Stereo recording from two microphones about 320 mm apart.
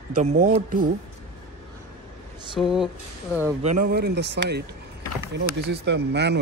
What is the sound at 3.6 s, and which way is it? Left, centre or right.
Speech, right.